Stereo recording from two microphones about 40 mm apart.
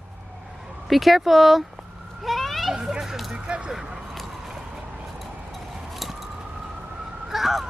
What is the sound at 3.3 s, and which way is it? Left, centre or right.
Speech, right.